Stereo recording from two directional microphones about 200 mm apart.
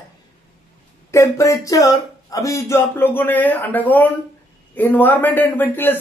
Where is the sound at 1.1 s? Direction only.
15° left (ahead or behind).